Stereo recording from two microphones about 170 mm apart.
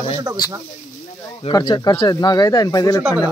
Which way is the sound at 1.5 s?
25° left (ahead or behind).